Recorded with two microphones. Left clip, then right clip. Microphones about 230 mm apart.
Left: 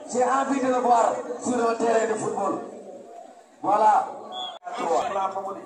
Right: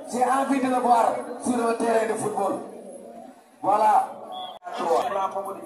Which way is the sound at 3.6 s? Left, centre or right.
Right.